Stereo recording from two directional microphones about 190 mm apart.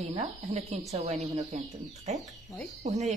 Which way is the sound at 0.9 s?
35° right (ahead or behind).